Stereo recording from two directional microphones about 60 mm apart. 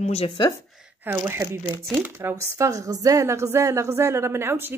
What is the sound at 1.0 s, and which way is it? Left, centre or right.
Speech, right.